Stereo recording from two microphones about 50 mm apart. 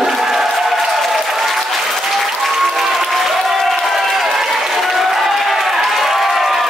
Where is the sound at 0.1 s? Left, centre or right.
Centre.